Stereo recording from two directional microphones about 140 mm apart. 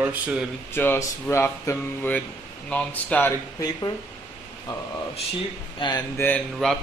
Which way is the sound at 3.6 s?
25° left (ahead or behind).